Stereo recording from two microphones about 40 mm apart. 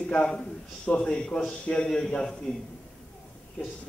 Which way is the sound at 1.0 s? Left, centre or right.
Left.